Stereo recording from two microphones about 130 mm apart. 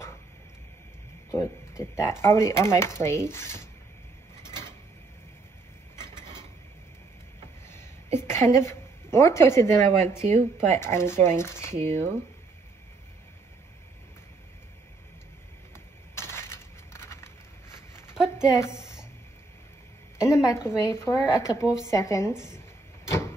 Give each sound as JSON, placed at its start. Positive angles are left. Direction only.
{"t": 1.3, "sound": "a woman's voice", "side_deg": 25}
{"t": 7.6, "sound": "a sound", "side_deg": 20}
{"t": 10.2, "sound": "speech", "side_deg": -60}
{"t": 10.8, "sound": "a woman's voice", "side_deg": 20}
{"t": 11.7, "sound": "speech", "side_deg": -60}
{"t": 15.7, "sound": "crushing", "side_deg": 20}
{"t": 18.1, "sound": "a sound", "side_deg": -5}
{"t": 20.2, "sound": "a woman's voice", "side_deg": 25}